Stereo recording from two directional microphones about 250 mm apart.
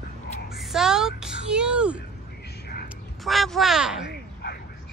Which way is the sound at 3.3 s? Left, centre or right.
Centre.